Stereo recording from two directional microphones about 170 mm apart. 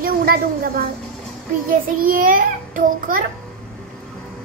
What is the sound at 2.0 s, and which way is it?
A child's voice, 55° right (ahead or behind).